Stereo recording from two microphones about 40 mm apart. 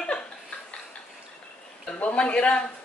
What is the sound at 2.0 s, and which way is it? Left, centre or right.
Speech, left.